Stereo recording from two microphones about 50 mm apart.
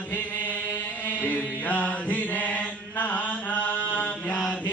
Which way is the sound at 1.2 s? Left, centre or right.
Left.